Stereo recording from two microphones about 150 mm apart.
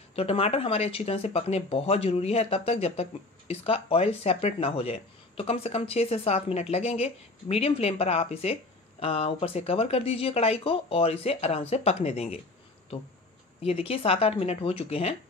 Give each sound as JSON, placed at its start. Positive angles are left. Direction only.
{"t": 0.1, "sound": "speech", "side_deg": 40}
{"t": 13.6, "sound": "speech", "side_deg": 40}